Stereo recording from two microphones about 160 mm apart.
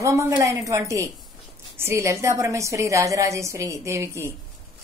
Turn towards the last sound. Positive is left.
turn(degrees=-20)  # may be behind; listen again after turning